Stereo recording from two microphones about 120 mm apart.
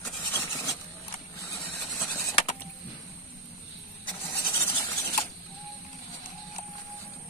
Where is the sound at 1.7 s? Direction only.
20° left (ahead or behind).